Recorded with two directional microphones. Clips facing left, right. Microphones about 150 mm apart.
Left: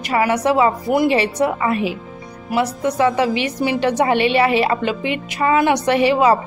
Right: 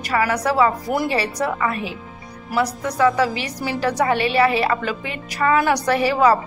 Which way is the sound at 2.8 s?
25° left (ahead or behind).